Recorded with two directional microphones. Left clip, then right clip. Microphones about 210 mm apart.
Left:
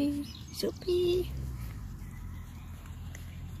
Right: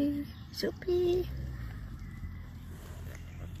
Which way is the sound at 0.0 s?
Centre (ahead or behind).